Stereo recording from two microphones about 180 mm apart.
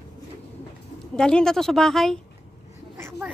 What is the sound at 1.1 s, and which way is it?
Speech, 5° left (ahead or behind).